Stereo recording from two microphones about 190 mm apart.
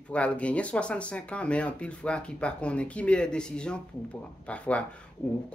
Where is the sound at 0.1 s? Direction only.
5° left (ahead or behind).